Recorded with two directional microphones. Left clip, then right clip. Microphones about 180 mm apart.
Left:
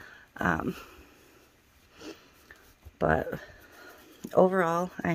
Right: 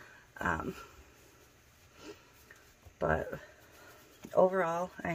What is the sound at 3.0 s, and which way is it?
Speech, 70° left (ahead or behind).